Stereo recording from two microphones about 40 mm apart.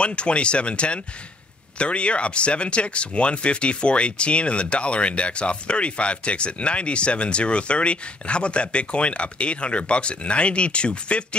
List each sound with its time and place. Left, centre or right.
0.0 s speech: left